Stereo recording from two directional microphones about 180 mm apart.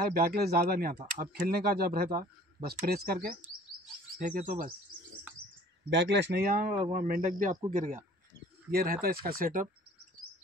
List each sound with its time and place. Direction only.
0.1 s speech: 60° right (ahead or behind)
5.9 s speech: 75° right (ahead or behind); by 9.7 s 50° right (ahead or behind)